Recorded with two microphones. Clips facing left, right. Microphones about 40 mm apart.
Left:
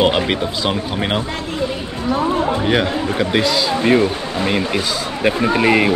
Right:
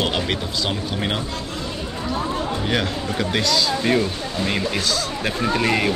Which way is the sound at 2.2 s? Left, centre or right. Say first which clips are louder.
Left 7 dB; left.